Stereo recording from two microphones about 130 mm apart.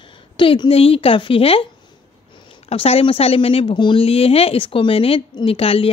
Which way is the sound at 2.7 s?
50° left (ahead or behind).